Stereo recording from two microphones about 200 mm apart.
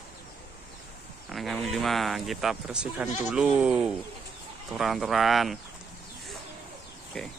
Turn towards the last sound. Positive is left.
turn(degrees=0)  # may be behind; listen again after turning